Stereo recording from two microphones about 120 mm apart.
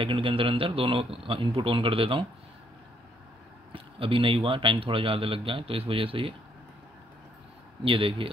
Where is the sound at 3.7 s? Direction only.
50° right (ahead or behind).